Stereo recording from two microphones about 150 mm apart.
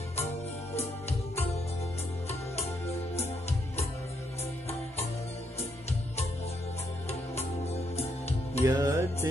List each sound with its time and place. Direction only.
3.2 s music: 45° left (ahead or behind)
8.6 s music: 20° right (ahead or behind)